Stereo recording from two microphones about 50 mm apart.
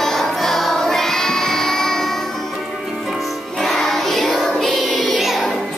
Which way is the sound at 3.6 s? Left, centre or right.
Centre.